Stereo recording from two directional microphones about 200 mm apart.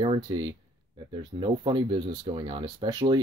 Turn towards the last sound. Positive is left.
turn(degrees=-20)  # may be behind; listen again after turning